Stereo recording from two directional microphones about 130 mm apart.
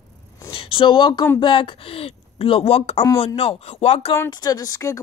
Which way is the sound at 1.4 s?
40° left (ahead or behind).